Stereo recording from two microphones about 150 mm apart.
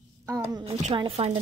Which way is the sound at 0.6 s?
45° right (ahead or behind).